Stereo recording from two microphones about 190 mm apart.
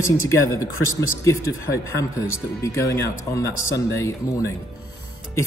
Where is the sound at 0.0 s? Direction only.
15° left (ahead or behind).